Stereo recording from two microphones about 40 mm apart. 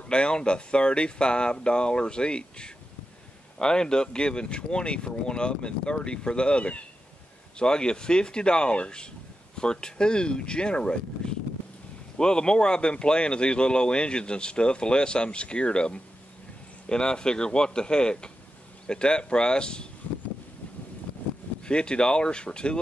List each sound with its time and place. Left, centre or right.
0.1 s speech: left
21.6 s speech: left